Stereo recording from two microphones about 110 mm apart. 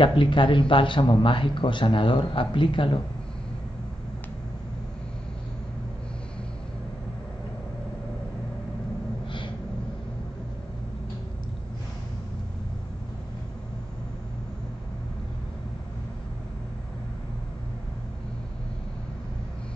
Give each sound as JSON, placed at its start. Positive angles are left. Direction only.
{"t": 0.0, "sound": "speech", "side_deg": 50}